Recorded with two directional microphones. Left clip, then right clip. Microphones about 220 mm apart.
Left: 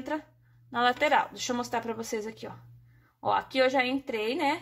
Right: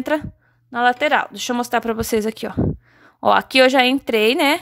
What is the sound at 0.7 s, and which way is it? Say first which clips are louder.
A woman's voice: right 8 dB; 30° right (ahead or behind).